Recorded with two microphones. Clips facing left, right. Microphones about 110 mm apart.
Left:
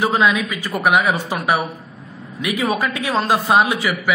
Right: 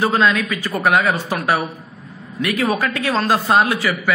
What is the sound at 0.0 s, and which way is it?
A man's voice, 15° left (ahead or behind).